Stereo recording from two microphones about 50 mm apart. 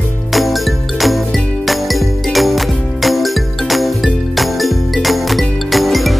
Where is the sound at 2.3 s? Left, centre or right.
Centre.